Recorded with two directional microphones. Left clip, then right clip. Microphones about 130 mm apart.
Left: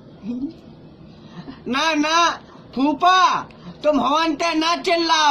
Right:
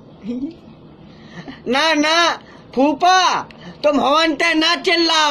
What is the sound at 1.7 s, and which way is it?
A man's voice, 15° left (ahead or behind).